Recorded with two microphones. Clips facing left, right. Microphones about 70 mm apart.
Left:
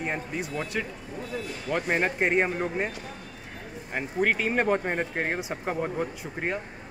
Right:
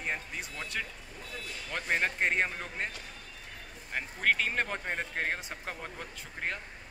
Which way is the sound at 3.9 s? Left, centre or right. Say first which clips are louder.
Left 4 dB; centre.